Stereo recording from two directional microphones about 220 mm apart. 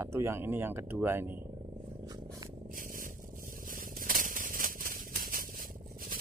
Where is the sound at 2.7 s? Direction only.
40° right (ahead or behind).